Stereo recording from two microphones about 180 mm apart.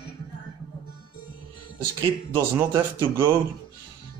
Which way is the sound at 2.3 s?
15° right (ahead or behind).